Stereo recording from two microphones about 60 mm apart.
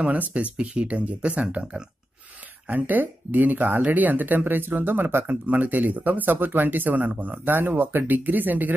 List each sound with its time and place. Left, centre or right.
0.0 s speech: right
2.7 s speech: right